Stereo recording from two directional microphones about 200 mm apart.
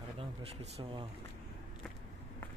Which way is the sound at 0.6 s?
25° right (ahead or behind).